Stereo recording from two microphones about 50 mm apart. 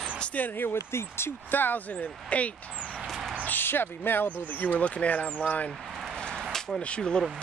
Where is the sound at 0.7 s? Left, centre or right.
Left.